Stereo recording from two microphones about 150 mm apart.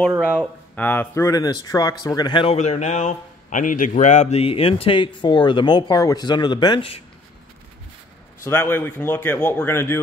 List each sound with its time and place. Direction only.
0.2 s speech: 10° left (ahead or behind); by 2.5 s 30° left (ahead or behind)
2.5 s a man's voice: 45° left (ahead or behind)
8.5 s speech: 15° left (ahead or behind)